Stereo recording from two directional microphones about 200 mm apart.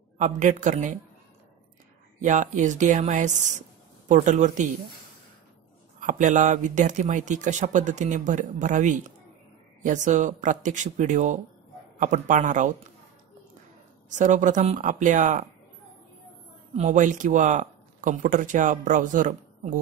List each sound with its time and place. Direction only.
0.2 s speech: 40° right (ahead or behind)
2.1 s speech: 40° right (ahead or behind)
5.9 s speech: 40° right (ahead or behind)
14.0 s speech: 35° right (ahead or behind)
16.7 s speech: 40° right (ahead or behind)